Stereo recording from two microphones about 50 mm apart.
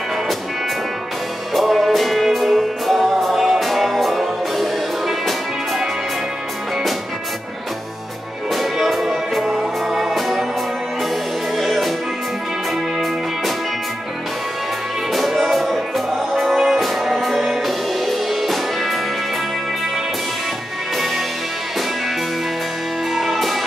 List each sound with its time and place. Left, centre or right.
1.5 s music: centre
8.5 s music: centre
11.5 s music: centre
15.1 s music: centre
23.1 s music: centre